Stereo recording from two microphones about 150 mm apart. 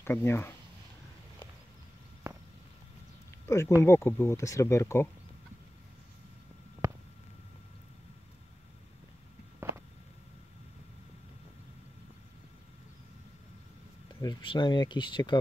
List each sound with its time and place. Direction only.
0.0 s speech: 15° left (ahead or behind)
2.3 s walk: 20° right (ahead or behind)
3.4 s speech: 20° left (ahead or behind)
6.8 s a sound: 20° right (ahead or behind)
14.2 s speech: 30° left (ahead or behind)